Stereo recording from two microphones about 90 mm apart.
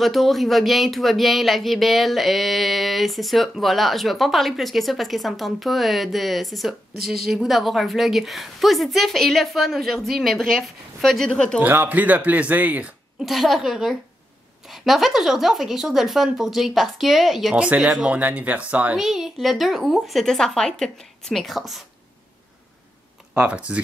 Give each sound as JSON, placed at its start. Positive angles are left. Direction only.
{"t": 0.0, "sound": "speech", "side_deg": 0}
{"t": 11.6, "sound": "speech", "side_deg": -20}
{"t": 13.2, "sound": "speech", "side_deg": 0}
{"t": 18.9, "sound": "speech", "side_deg": -5}
{"t": 23.3, "sound": "speech", "side_deg": -10}